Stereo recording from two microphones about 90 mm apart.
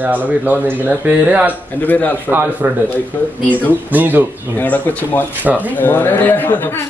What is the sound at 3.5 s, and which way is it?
Speech, 20° left (ahead or behind).